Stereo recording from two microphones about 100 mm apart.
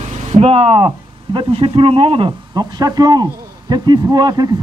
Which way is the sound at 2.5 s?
40° right (ahead or behind).